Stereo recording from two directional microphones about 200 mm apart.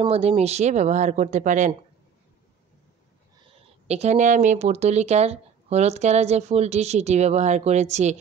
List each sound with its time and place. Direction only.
0.0 s speech: 30° right (ahead or behind)
3.8 s speech: 35° right (ahead or behind)